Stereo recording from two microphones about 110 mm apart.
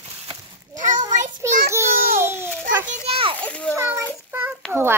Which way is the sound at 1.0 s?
25° right (ahead or behind).